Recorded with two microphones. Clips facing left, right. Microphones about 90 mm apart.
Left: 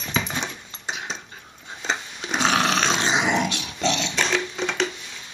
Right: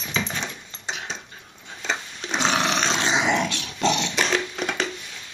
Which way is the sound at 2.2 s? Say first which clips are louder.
Left 2 dB; 10° left (ahead or behind).